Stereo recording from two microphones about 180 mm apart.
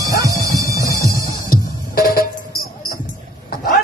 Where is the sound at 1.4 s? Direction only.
55° left (ahead or behind).